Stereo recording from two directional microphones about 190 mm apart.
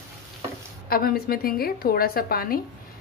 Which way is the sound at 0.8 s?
55° left (ahead or behind).